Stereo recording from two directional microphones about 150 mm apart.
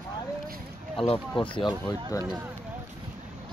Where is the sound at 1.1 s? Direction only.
30° left (ahead or behind).